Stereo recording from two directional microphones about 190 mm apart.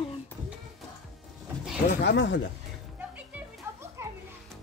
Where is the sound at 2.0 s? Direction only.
70° left (ahead or behind).